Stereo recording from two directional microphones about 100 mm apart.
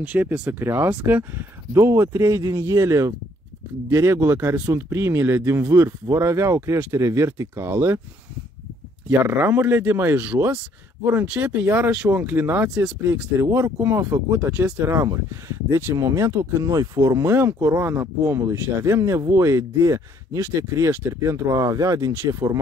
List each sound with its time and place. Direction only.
0.0 s speech: 15° right (ahead or behind)
9.1 s speech: 20° right (ahead or behind)
12.7 s speech: 10° right (ahead or behind)
13.4 s speech: 25° right (ahead or behind)